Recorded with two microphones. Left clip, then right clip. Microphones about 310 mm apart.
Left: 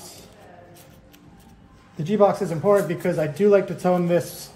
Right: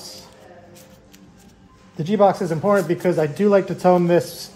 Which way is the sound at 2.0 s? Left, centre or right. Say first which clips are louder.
Right 2 dB; right.